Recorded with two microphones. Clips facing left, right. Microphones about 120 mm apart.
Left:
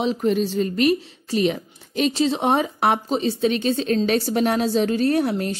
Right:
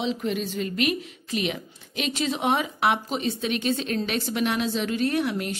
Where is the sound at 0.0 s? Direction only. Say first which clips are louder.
Left 6 dB; 45° left (ahead or behind).